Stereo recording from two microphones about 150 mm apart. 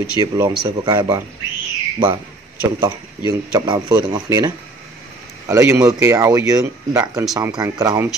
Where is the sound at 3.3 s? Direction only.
25° right (ahead or behind).